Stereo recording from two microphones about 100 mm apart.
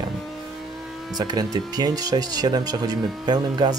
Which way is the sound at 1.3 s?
40° right (ahead or behind).